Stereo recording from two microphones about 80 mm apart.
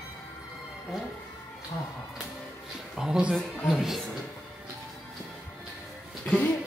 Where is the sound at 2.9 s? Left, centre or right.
Centre.